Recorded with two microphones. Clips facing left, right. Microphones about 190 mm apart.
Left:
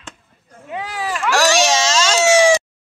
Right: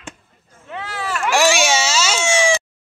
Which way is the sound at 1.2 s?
10° right (ahead or behind).